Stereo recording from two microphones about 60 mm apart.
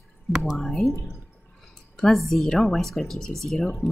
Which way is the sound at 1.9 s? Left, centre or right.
Centre.